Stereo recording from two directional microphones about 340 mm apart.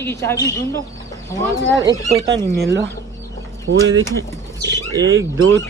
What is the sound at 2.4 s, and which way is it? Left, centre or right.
Speech, centre.